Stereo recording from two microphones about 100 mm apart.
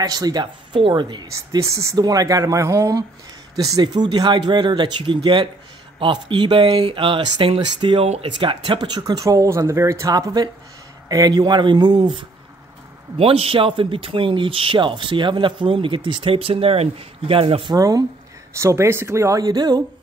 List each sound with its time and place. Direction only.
0.0 s speech: 40° right (ahead or behind)
1.2 s speech: 35° right (ahead or behind); by 8.0 s 60° right (ahead or behind)
8.0 s speech: 90° right
8.3 s speech: 55° right (ahead or behind)
13.2 s speech: 70° right (ahead or behind)
17.7 s speech: 35° right (ahead or behind)